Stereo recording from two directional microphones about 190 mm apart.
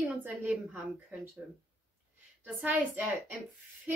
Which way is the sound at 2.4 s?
10° right (ahead or behind).